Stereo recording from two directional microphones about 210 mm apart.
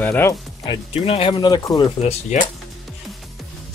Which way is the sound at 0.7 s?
30° left (ahead or behind).